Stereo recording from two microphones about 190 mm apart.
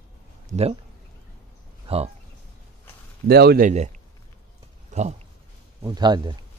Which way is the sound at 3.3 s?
55° right (ahead or behind).